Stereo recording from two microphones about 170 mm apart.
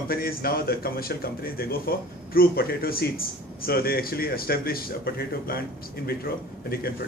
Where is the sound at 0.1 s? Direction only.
60° left (ahead or behind).